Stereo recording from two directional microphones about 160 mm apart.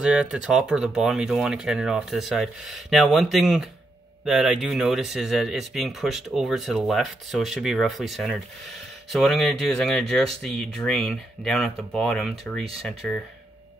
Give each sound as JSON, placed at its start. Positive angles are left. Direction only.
{"t": 0.0, "sound": "speech", "side_deg": -5}